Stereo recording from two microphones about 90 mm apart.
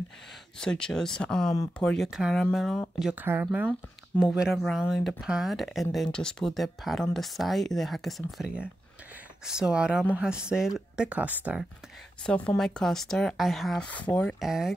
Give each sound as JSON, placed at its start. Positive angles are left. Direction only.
{"t": 0.6, "sound": "speech", "side_deg": 10}
{"t": 2.0, "sound": "speech", "side_deg": -10}
{"t": 3.2, "sound": "speech", "side_deg": -20}
{"t": 4.2, "sound": "speech", "side_deg": -10}
{"t": 12.2, "sound": "speech", "side_deg": 10}
{"t": 13.7, "sound": "speech", "side_deg": 15}
{"t": 14.4, "sound": "speech", "side_deg": -5}